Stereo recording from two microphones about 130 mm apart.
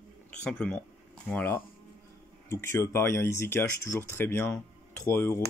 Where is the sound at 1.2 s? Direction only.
15° left (ahead or behind).